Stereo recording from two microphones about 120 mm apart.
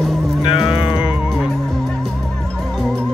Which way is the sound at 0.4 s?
45° left (ahead or behind).